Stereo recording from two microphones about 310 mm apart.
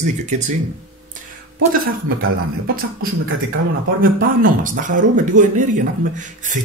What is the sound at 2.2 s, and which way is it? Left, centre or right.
Speech, right.